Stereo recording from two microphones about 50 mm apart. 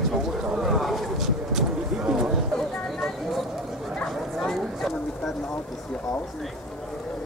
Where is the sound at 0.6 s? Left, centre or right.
Centre.